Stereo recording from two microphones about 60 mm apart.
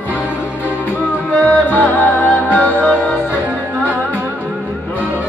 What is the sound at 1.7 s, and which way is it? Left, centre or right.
Music, left.